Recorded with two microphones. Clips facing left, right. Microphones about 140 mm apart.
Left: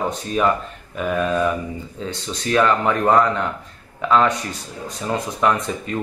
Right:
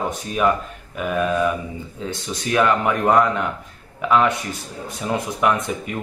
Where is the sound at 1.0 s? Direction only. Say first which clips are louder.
Left 1 dB; 5° right (ahead or behind).